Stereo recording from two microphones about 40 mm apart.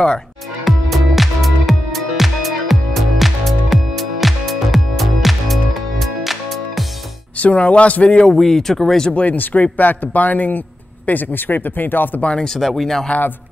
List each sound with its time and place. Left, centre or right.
0.7 s music: centre
7.3 s a man's voice: left
8.3 s speech: centre
9.1 s a man's voice: left
12.2 s speech: left
12.5 s speech: centre